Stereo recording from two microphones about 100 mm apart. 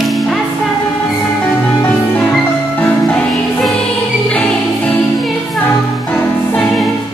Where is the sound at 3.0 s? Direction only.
5° left (ahead or behind).